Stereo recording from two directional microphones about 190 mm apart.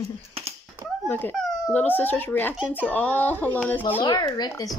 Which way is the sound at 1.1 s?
10° left (ahead or behind).